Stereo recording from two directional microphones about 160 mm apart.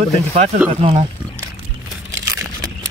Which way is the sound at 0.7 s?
35° right (ahead or behind).